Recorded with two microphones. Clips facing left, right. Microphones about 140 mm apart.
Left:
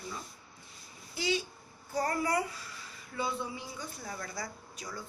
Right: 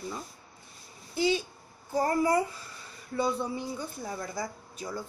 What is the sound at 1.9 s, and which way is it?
Speech, 25° right (ahead or behind).